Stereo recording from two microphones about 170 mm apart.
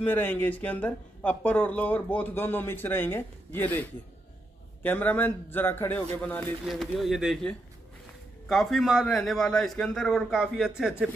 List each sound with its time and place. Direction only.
0.0 s speech: 10° left (ahead or behind)
6.6 s a man's voice: centre (ahead or behind)